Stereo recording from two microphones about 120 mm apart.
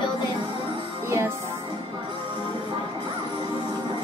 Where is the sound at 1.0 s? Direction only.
25° right (ahead or behind).